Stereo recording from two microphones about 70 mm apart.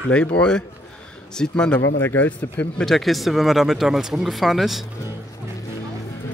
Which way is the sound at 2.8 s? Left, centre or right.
Centre.